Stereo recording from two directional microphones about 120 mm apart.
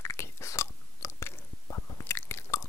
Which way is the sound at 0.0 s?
25° left (ahead or behind).